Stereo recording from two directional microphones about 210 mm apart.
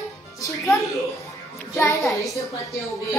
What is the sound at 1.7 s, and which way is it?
Child singing, 15° left (ahead or behind).